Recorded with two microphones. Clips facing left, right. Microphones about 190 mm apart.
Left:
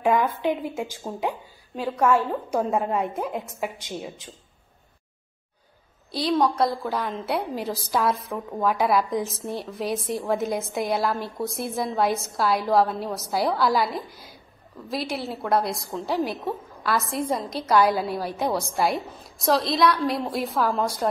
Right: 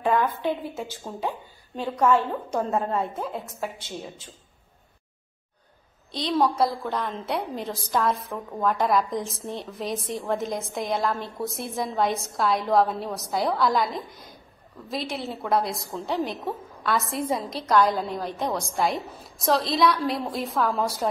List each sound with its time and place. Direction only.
0.0 s a woman's voice: 10° left (ahead or behind)
6.3 s a woman's voice: centre (ahead or behind)